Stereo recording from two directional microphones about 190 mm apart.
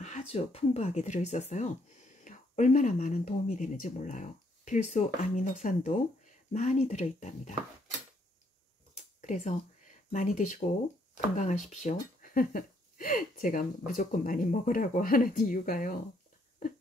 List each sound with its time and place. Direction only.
0.0 s speech: 35° left (ahead or behind)
8.9 s a sound: 40° left (ahead or behind)
11.7 s speech: 45° left (ahead or behind)